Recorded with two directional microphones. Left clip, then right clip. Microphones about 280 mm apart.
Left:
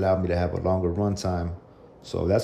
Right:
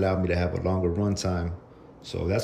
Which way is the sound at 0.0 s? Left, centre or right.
Centre.